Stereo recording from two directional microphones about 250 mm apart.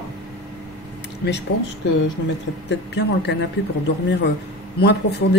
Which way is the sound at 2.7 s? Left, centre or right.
Left.